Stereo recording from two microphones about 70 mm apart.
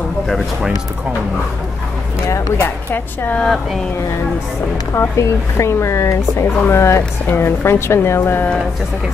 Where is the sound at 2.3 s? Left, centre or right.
Left.